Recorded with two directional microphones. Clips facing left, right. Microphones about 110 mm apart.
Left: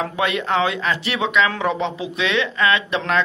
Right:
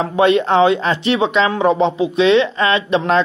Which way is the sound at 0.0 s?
30° right (ahead or behind).